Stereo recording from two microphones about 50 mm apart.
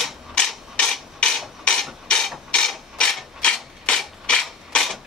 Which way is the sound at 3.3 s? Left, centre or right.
Centre.